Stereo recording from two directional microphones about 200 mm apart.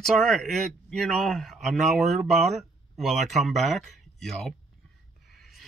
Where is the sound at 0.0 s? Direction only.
Centre (ahead or behind).